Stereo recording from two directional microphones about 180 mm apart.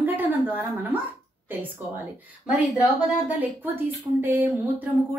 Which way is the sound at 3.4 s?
10° right (ahead or behind).